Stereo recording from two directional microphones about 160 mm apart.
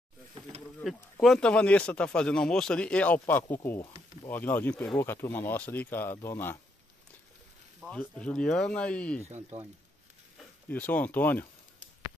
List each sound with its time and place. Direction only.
0.8 s speech: centre (ahead or behind); by 6.6 s 15° left (ahead or behind)
7.9 s speech: 5° left (ahead or behind)
9.5 s speech: 45° right (ahead or behind)
10.7 s speech: 10° left (ahead or behind)